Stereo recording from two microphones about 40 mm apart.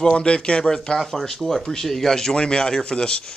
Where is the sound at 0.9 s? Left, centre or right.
Centre.